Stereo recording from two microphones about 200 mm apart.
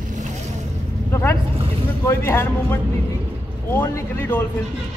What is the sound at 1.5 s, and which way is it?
Vehicle, 30° right (ahead or behind).